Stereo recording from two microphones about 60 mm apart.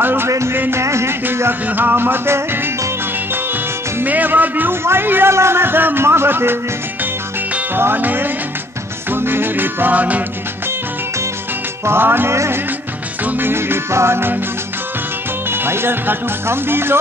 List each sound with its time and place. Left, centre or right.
0.0 s music: right
0.3 s music: right
1.7 s speech: right
4.0 s speech: right
7.7 s speech: right
9.1 s music: right
11.8 s speech: right
15.5 s speech: right